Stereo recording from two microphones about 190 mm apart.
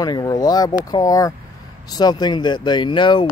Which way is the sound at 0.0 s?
20° left (ahead or behind).